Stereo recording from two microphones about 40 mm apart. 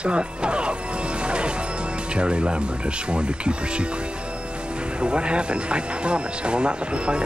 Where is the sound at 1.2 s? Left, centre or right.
Right.